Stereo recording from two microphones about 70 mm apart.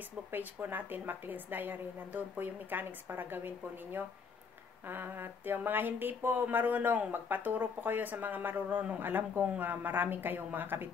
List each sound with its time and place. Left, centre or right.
0.3 s speech: right